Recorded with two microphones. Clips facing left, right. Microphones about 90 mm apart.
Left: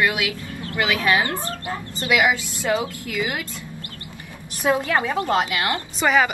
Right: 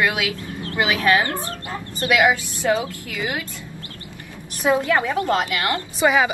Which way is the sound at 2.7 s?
20° left (ahead or behind).